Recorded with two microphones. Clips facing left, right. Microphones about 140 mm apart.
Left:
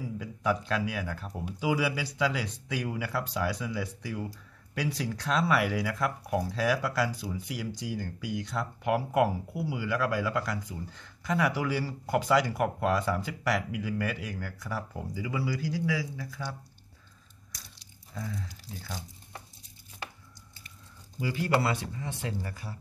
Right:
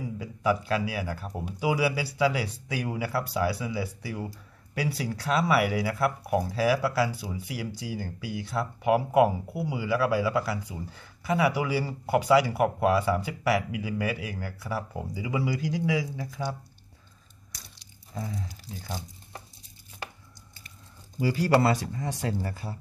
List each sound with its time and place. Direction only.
0.2 s speech: 10° right (ahead or behind)
18.1 s speech: 25° right (ahead or behind)
21.2 s speech: 35° right (ahead or behind)